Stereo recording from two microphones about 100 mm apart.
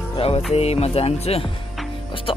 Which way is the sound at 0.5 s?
90° left.